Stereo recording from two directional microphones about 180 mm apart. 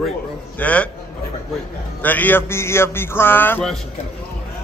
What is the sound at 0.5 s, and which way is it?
Speech, 5° left (ahead or behind).